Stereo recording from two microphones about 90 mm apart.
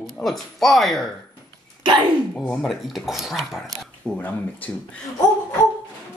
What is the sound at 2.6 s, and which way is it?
Speech, centre (ahead or behind).